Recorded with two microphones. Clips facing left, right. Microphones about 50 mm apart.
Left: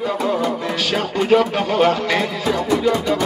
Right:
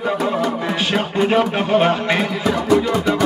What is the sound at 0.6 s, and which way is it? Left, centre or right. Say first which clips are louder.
Speech: right 1 dB; right.